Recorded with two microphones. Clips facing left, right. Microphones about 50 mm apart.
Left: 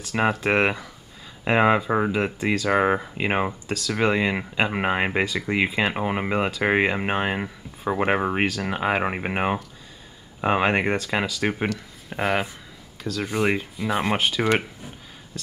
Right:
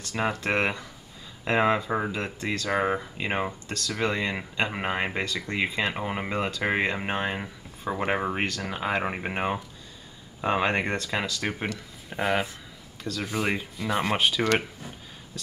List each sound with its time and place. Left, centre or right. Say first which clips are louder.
0.3 s speech: left 4 dB; centre
3.6 s speech: left 5 dB; centre
12.1 s speech: left 2 dB; centre